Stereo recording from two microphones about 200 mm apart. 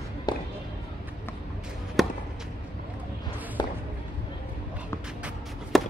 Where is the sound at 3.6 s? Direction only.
20° left (ahead or behind).